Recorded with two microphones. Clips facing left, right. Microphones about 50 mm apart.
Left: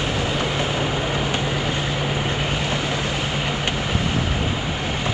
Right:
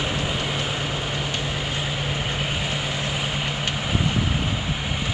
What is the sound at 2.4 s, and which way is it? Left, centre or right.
Vehicle, centre.